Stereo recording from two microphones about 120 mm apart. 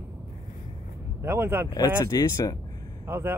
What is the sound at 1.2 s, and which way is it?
Speech, 15° right (ahead or behind).